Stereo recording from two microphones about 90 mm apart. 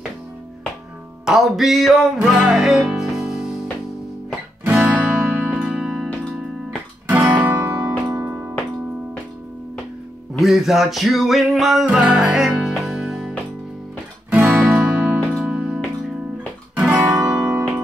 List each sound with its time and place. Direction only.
1.2 s music: centre (ahead or behind)
4.6 s music: 15° right (ahead or behind)
7.1 s music: 20° right (ahead or behind)
10.3 s music: centre (ahead or behind)
14.7 s music: 10° right (ahead or behind)